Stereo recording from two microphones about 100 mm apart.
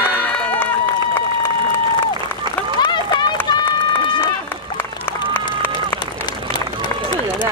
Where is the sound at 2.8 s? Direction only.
50° left (ahead or behind).